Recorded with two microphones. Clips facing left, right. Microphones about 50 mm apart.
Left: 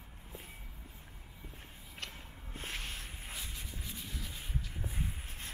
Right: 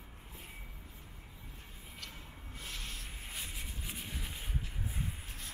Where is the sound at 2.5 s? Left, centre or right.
Left.